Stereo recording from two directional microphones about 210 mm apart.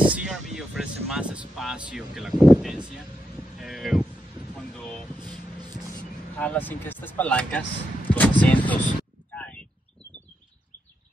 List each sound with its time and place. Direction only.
0.0 s vehicle: 5° right (ahead or behind)
1.9 s speech: centre (ahead or behind)
3.5 s boat: centre (ahead or behind)
4.6 s vehicle: 5° left (ahead or behind)
5.6 s a sound: 20° right (ahead or behind)
6.3 s speech: 10° left (ahead or behind)
8.1 s a sound: 5° left (ahead or behind)